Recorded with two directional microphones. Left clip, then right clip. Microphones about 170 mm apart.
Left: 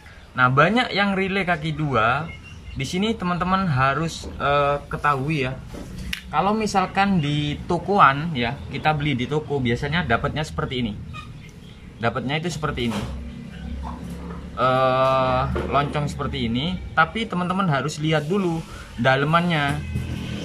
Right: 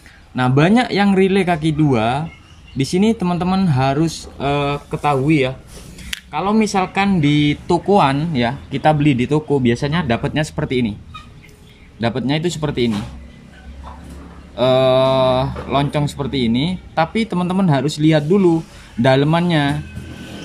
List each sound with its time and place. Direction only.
0.4 s speech: 30° right (ahead or behind)
12.0 s speech: 25° right (ahead or behind)
14.6 s speech: 25° right (ahead or behind)